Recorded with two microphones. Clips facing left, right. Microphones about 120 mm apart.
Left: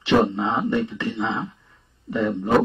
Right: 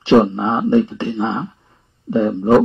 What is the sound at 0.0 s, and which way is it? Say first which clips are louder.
Speech: right 6 dB; 30° right (ahead or behind).